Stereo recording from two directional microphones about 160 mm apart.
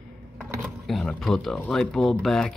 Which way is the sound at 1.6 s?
5° left (ahead or behind).